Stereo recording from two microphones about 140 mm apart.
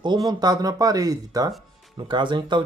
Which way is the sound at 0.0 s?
30° right (ahead or behind).